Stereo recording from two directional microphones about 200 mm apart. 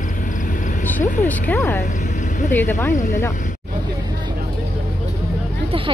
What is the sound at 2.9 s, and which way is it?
Speech, 40° left (ahead or behind).